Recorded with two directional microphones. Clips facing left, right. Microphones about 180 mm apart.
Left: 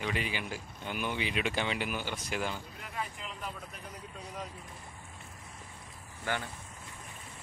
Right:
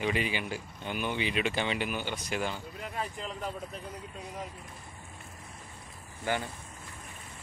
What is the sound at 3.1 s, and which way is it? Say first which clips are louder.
Speech: right 5 dB; 35° right (ahead or behind).